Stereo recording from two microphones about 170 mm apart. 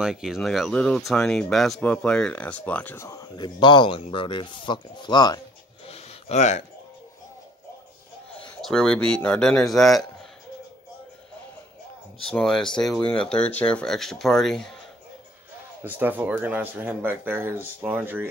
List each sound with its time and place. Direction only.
0.0 s speech: 5° right (ahead or behind); by 5.4 s 25° left (ahead or behind)
5.9 s a sound: 35° left (ahead or behind)
8.5 s speech: 5° left (ahead or behind)
12.3 s speech: 5° left (ahead or behind)
15.8 s speech: 10° right (ahead or behind)